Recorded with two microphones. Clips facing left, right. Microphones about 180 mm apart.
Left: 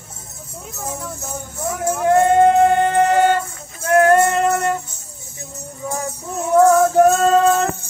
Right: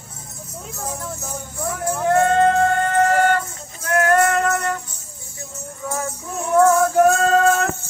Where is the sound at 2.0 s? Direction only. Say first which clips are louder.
Left 3 dB; 15° left (ahead or behind).